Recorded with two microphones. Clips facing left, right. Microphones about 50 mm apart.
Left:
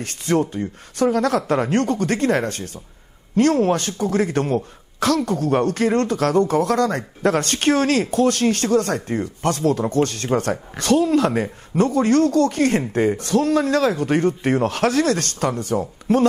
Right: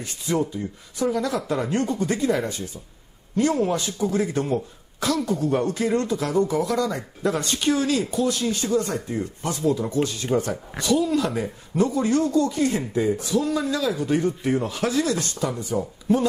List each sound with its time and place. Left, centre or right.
0.0 s a man's voice: left
11.8 s speech: left